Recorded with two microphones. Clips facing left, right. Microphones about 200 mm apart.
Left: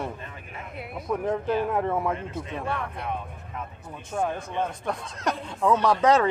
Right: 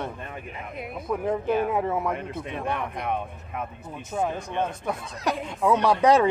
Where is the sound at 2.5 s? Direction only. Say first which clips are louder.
Right 2 dB; 15° right (ahead or behind).